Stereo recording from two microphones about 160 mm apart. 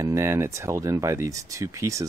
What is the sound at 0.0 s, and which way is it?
Speech, 20° right (ahead or behind).